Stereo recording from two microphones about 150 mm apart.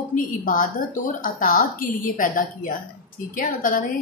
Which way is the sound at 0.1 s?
60° left (ahead or behind).